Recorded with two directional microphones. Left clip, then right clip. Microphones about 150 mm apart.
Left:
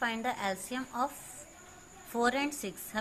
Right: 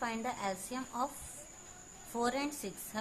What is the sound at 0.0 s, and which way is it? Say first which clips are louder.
A woman's voice: left 4 dB; 10° left (ahead or behind).